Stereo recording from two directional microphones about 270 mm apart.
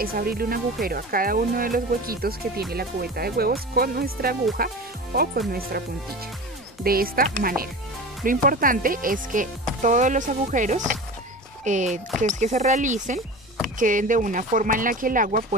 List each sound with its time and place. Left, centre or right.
0.0 s speech: right
6.8 s speech: right